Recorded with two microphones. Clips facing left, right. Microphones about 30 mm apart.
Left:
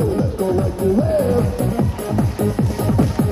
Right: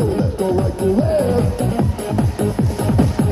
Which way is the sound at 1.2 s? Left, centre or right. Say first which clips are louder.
Even; right.